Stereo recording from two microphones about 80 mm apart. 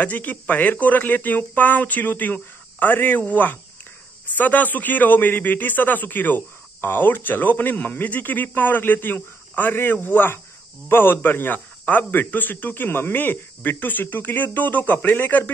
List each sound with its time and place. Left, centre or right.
0.0 s a man's voice: left